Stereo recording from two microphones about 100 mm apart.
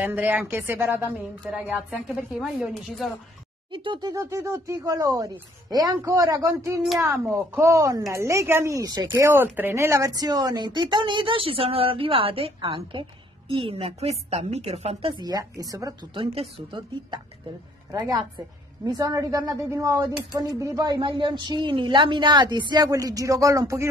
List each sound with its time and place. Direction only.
0.0 s a woman's voice: 20° right (ahead or behind)
2.3 s a woman's voice: 5° right (ahead or behind)
3.7 s speech: 55° right (ahead or behind)
4.1 s a woman's voice: 30° right (ahead or behind)
9.0 s a woman's voice: 20° right (ahead or behind); by 15.1 s 80° right
15.1 s a woman's voice: 40° right (ahead or behind)
16.2 s speech: 65° right (ahead or behind)
17.9 s a woman's voice: 40° right (ahead or behind)
21.0 s speech: 55° right (ahead or behind); by 23.9 s 30° right (ahead or behind)